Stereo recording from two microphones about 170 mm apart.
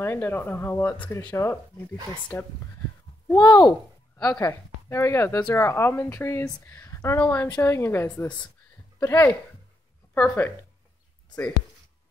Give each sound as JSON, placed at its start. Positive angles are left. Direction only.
{"t": 0.0, "sound": "speech", "side_deg": 15}